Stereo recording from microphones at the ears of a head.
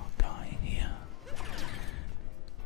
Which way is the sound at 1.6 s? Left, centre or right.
Left.